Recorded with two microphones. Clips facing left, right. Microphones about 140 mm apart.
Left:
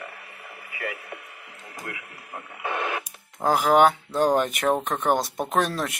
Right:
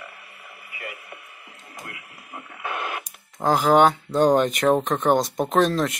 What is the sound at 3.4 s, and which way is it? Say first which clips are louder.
Speech: right 1 dB; 5° left (ahead or behind).